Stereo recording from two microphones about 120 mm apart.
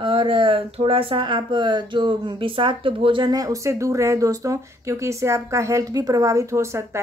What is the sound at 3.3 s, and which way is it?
Speech, 30° right (ahead or behind).